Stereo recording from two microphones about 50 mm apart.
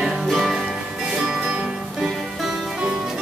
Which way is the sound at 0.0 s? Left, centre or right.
Centre.